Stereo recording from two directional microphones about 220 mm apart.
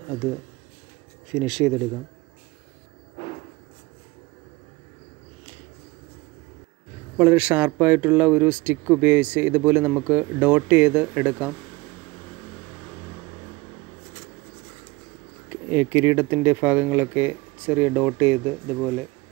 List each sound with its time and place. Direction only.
1.3 s speech: centre (ahead or behind)
7.2 s speech: 5° right (ahead or behind)
15.7 s speech: 10° right (ahead or behind)